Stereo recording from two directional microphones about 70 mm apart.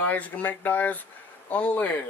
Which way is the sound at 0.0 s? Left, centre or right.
Left.